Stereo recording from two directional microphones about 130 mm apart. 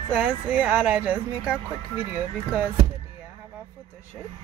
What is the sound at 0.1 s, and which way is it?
Speech, 10° right (ahead or behind).